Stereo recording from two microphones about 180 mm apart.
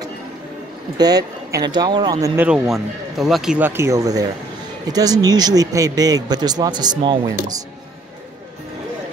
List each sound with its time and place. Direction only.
0.9 s a man's voice: 20° right (ahead or behind)
2.3 s a man's voice: 5° right (ahead or behind); by 7.5 s 25° right (ahead or behind)